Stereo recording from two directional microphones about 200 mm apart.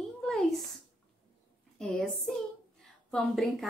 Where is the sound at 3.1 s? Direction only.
Centre (ahead or behind).